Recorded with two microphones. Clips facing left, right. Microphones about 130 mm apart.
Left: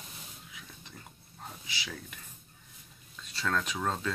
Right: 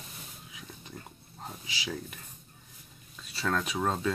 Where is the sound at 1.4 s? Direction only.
20° right (ahead or behind).